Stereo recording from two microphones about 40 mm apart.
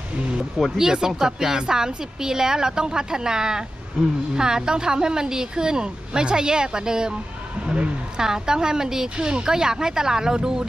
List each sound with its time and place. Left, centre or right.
0.7 s a woman's voice: centre
8.2 s a woman's voice: centre